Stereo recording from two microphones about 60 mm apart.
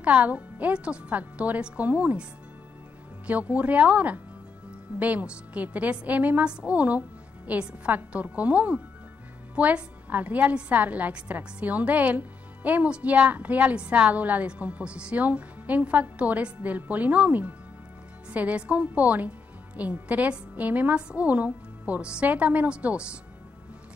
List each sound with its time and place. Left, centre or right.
0.0 s a woman's voice: right
3.3 s a woman's voice: right